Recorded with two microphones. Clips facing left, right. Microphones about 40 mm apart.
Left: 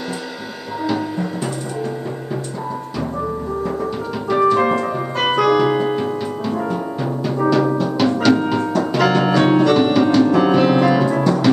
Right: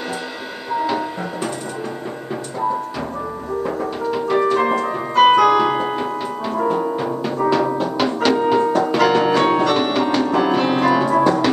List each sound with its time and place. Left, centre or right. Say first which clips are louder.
0.8 s music: left 1 dB; centre
3.6 s piano: even; centre
6.5 s music: right 3 dB; centre